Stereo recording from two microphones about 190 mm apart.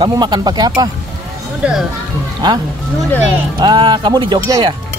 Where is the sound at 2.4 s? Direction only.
20° right (ahead or behind).